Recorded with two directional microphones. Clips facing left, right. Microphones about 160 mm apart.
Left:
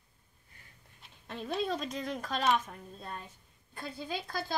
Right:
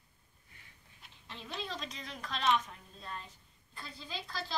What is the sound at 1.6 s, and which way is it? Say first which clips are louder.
A woman's voice: left 9 dB; 50° left (ahead or behind).